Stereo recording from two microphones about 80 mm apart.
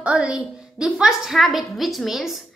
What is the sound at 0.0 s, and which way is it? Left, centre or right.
A woman's voice, centre.